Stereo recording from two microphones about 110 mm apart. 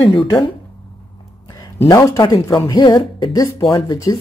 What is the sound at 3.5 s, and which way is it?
Speech, 55° left (ahead or behind).